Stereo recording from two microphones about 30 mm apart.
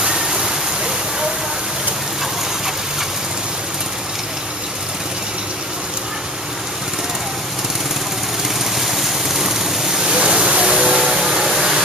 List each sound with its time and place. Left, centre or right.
0.0 s waterfall: centre
8.7 s boat: centre
10.0 s a sound: right